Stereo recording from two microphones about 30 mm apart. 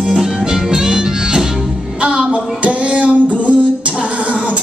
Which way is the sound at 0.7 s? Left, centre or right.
Right.